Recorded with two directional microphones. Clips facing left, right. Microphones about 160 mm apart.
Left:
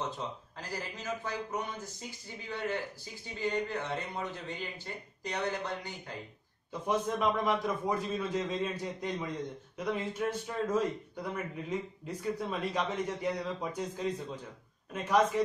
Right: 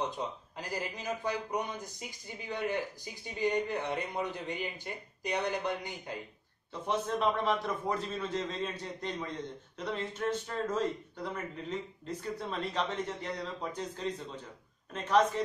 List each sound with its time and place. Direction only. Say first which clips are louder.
0.6 s a man's voice: right 3 dB; 15° right (ahead or behind)
6.7 s speech: left 1 dB; 10° left (ahead or behind)